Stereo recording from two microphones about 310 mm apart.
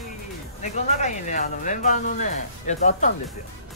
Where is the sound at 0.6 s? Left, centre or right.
Left.